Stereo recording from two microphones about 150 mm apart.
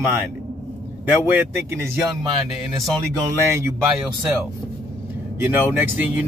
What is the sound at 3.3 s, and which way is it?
Speech, 20° right (ahead or behind).